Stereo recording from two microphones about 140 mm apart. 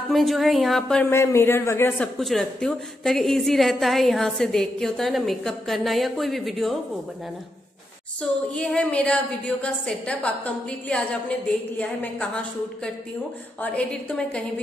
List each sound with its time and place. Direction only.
0.1 s a woman's voice: centre (ahead or behind)
1.1 s a man's voice: 20° left (ahead or behind)
2.1 s a woman's voice: 5° left (ahead or behind)
8.2 s a woman's voice: 5° left (ahead or behind)
13.6 s a woman's voice: 10° left (ahead or behind)